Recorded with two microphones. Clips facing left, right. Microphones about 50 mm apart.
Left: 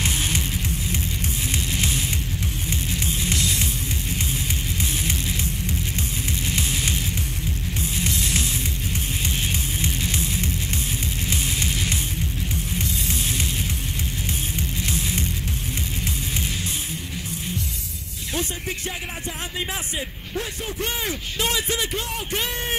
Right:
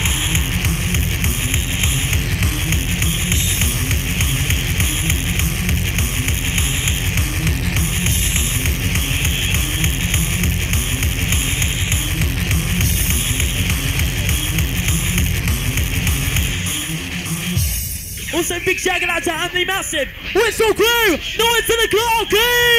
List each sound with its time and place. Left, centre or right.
18.3 s speech: right
20.3 s speech: right
21.5 s speech: right